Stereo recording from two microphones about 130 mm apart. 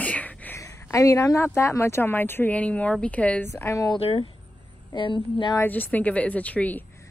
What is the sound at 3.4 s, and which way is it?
Speech, 20° left (ahead or behind).